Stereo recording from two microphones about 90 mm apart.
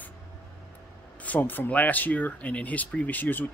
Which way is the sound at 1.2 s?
20° left (ahead or behind).